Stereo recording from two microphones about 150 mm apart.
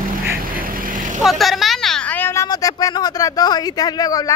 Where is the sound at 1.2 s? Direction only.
Centre (ahead or behind).